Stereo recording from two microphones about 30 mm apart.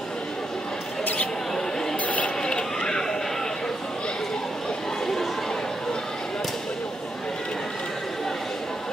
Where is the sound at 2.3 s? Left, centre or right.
Left.